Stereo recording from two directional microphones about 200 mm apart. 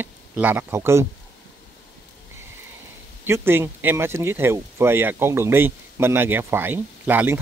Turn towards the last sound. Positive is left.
turn(degrees=-10)  # may be behind; listen again after turning